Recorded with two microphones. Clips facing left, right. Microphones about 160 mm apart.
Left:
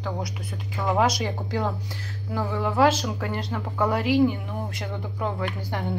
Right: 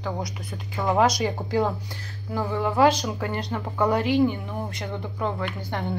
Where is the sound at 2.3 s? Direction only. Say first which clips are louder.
Right 1 dB; centre (ahead or behind).